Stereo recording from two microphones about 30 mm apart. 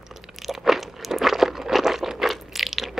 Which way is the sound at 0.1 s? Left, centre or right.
Centre.